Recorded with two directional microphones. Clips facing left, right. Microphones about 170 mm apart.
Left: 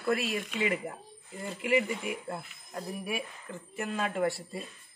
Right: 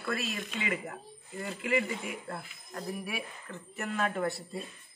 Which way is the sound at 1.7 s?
10° left (ahead or behind).